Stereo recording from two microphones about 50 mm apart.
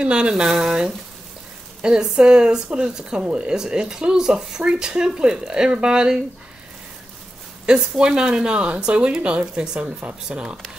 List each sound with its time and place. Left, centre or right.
0.0 s speech: centre
0.3 s speech: centre
7.6 s speech: centre